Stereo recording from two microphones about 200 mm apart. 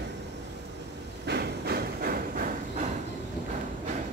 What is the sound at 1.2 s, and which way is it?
Hammer, 55° right (ahead or behind).